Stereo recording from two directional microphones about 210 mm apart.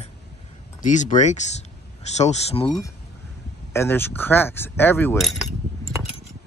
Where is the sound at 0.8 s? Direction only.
35° left (ahead or behind).